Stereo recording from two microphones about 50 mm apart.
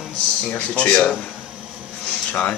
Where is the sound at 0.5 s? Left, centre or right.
Left.